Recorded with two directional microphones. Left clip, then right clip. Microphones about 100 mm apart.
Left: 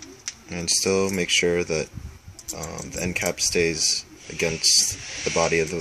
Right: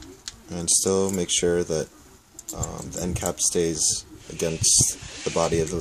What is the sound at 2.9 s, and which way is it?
Speech, 30° right (ahead or behind).